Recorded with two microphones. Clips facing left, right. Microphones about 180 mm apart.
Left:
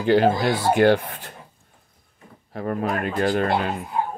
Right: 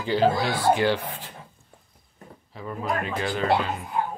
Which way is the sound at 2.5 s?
60° left (ahead or behind).